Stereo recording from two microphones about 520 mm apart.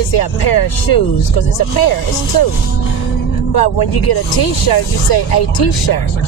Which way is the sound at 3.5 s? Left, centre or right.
Left.